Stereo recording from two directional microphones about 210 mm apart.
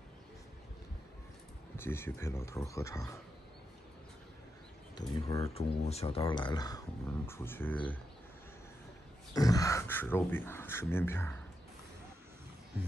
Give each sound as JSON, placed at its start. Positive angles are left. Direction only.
{"t": 1.8, "sound": "speech", "side_deg": 10}
{"t": 4.9, "sound": "speech", "side_deg": 15}
{"t": 5.5, "sound": "speech", "side_deg": 30}
{"t": 9.3, "sound": "speech", "side_deg": 15}